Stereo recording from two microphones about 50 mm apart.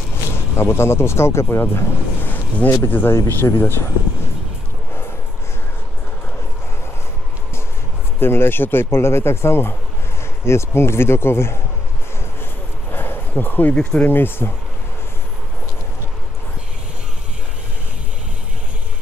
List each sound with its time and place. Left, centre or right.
0.1 s speech: left
1.6 s vehicle: left
3.1 s speech: left
8.2 s speech: left
12.9 s a sound: left
13.4 s speech: left